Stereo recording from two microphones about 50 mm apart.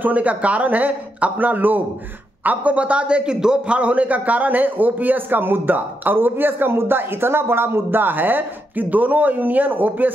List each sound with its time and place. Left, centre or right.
0.0 s a man's voice: right; by 3.7 s centre
3.7 s a man's voice: right